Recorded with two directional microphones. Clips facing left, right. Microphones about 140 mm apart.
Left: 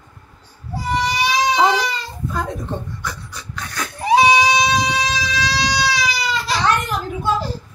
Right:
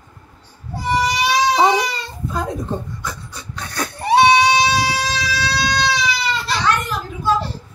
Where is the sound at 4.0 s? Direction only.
Centre (ahead or behind).